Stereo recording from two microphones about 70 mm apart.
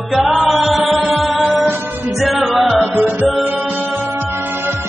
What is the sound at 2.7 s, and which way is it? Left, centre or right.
Music, right.